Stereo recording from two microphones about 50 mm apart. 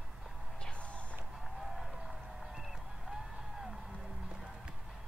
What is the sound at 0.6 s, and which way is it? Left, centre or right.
Music, left.